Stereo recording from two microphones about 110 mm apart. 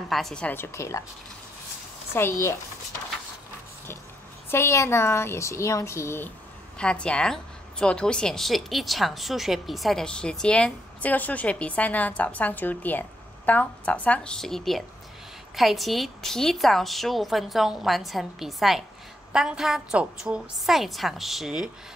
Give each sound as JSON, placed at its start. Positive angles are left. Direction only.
{"t": 0.1, "sound": "a woman's voice", "side_deg": 5}
{"t": 0.6, "sound": "speech", "side_deg": 25}
{"t": 2.1, "sound": "speech", "side_deg": 20}
{"t": 4.5, "sound": "speech", "side_deg": 25}
{"t": 6.8, "sound": "a woman's voice", "side_deg": 10}